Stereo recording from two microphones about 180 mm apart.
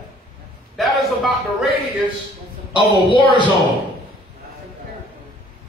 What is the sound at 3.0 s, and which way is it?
Speech, 25° left (ahead or behind).